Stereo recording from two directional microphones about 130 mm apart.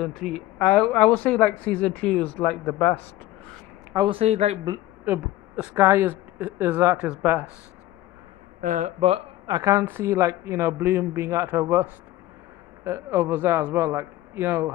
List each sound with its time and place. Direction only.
0.0 s speech: centre (ahead or behind)
4.1 s speech: 55° right (ahead or behind)
5.0 s speech: 15° right (ahead or behind)
8.5 s speech: 80° right
9.0 s speech: 50° right (ahead or behind)
9.5 s speech: 25° right (ahead or behind)